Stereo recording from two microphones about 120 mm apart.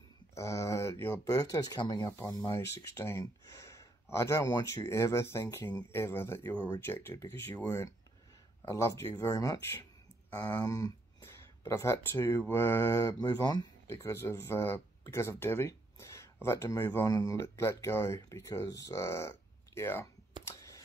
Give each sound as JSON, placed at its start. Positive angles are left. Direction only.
{"t": 0.3, "sound": "speech", "side_deg": 25}
{"t": 10.3, "sound": "speech", "side_deg": 35}
{"t": 13.8, "sound": "speech", "side_deg": 25}
{"t": 20.4, "sound": "a sound", "side_deg": 25}